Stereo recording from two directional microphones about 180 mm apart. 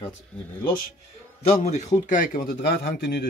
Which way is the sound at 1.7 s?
40° left (ahead or behind).